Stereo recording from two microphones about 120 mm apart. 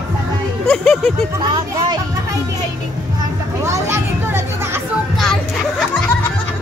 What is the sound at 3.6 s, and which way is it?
Children playing, 25° right (ahead or behind).